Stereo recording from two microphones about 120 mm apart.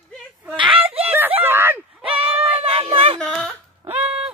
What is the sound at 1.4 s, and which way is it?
Screaming, 15° right (ahead or behind).